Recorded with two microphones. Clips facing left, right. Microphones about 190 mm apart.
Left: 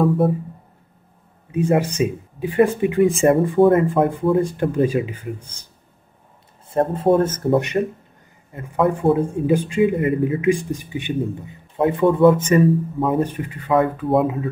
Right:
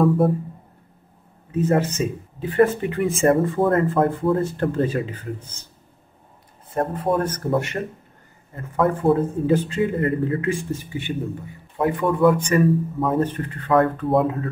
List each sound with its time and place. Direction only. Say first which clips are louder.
0.0 s speech: even; centre (ahead or behind)
1.5 s speech: left 1 dB; 10° left (ahead or behind)
6.7 s speech: left 5 dB; 25° left (ahead or behind)
13.0 s speech: left 2 dB; 5° left (ahead or behind)